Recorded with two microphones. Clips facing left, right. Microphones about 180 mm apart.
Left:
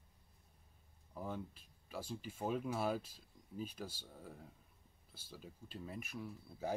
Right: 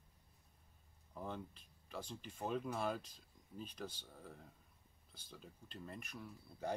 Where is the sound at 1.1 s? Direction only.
5° left (ahead or behind).